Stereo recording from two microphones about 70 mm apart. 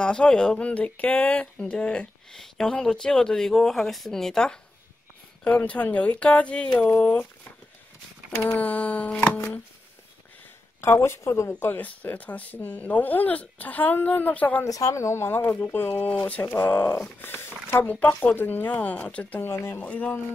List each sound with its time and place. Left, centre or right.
0.0 s speech: centre
2.3 s speech: centre
5.5 s speech: left
8.5 s speech: left
10.8 s speech: left
11.6 s speech: left
14.7 s speech: left
17.8 s speech: left
19.4 s speech: left
19.8 s speech: left